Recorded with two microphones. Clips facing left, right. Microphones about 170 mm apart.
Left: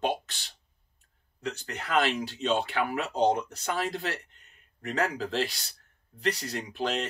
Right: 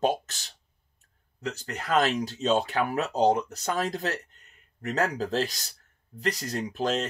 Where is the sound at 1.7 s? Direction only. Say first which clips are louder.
Right 3 dB; 40° right (ahead or behind).